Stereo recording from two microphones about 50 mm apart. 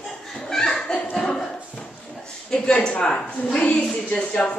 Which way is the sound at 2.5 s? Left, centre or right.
Centre.